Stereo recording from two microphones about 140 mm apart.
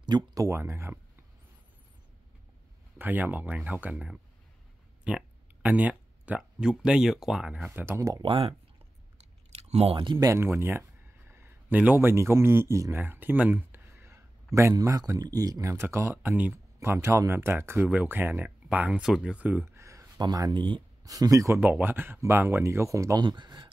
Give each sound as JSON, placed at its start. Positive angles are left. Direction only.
{"t": 0.0, "sound": "speech", "side_deg": -30}
{"t": 3.0, "sound": "speech", "side_deg": -15}
{"t": 7.8, "sound": "speech", "side_deg": -20}
{"t": 8.2, "sound": "speech", "side_deg": -40}
{"t": 9.6, "sound": "speech", "side_deg": -50}
{"t": 10.1, "sound": "speech", "side_deg": -20}
{"t": 21.5, "sound": "speech", "side_deg": -10}
{"t": 23.2, "sound": "speech", "side_deg": -35}